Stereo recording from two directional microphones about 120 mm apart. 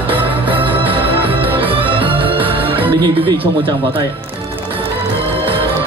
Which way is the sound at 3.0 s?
40° right (ahead or behind).